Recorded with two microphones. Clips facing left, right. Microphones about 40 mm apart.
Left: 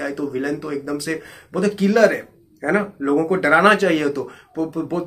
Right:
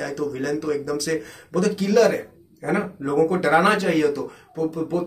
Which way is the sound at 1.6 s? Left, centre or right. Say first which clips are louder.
Left 3 dB; left.